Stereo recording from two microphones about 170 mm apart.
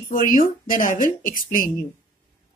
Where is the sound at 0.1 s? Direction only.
55° left (ahead or behind).